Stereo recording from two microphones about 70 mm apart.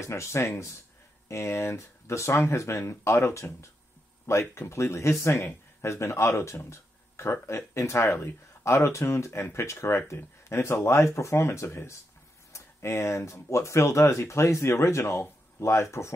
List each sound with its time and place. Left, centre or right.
0.0 s speech: left